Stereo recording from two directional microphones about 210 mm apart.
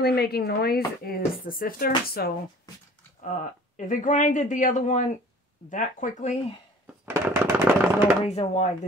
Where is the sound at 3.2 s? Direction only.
35° left (ahead or behind).